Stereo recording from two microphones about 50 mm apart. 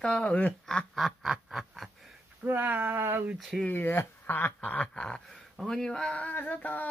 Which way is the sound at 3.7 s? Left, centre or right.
Left.